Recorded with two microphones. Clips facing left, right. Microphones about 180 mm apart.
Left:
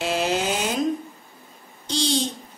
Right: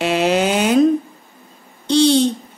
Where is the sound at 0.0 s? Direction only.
70° right (ahead or behind).